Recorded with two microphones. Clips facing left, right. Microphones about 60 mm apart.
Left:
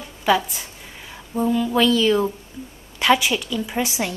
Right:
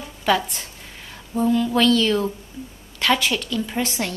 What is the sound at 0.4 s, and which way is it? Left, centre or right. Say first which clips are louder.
A woman's voice: even; centre.